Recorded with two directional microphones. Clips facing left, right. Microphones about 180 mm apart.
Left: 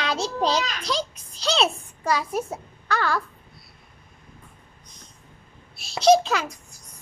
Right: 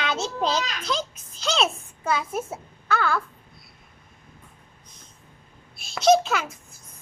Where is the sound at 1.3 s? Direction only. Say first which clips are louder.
Left 1 dB; 35° left (ahead or behind).